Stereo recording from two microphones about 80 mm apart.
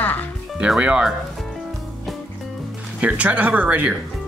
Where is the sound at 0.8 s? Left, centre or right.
Centre.